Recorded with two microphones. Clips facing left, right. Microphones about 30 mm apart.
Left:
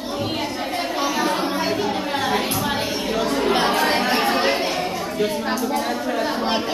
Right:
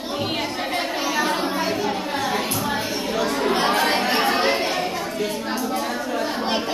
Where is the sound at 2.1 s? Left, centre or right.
Centre.